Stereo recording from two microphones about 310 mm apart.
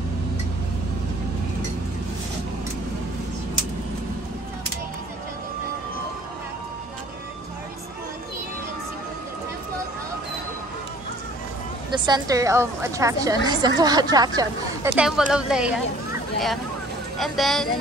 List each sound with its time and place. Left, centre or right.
11.9 s a woman's voice: centre
17.2 s speech: centre